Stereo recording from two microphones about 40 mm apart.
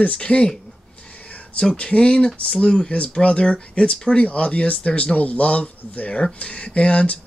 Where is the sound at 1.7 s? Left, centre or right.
Left.